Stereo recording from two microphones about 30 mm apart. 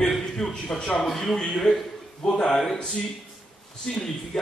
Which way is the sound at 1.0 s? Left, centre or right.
Centre.